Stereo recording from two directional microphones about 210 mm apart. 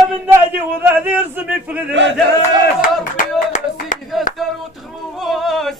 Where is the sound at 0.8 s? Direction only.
10° right (ahead or behind).